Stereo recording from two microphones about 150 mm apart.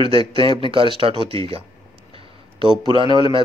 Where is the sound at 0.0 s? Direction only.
35° right (ahead or behind).